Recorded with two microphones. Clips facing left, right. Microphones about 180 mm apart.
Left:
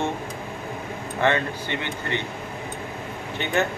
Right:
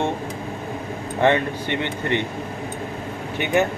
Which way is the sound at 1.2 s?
20° right (ahead or behind).